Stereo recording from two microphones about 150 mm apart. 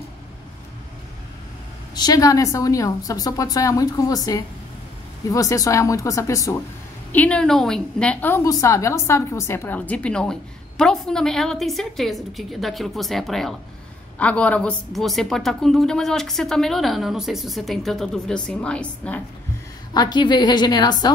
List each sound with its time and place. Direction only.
2.0 s a woman's voice: 25° left (ahead or behind)
7.1 s a woman's voice: 10° left (ahead or behind)
19.9 s a woman's voice: 30° left (ahead or behind)